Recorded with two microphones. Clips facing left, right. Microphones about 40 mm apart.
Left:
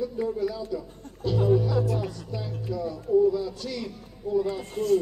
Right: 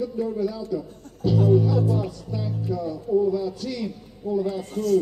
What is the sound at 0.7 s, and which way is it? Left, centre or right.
Speech, centre.